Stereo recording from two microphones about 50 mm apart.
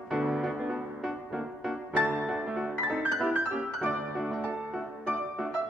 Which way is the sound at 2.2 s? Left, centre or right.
Centre.